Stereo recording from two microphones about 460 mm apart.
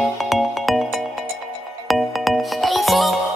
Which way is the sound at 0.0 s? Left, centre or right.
Centre.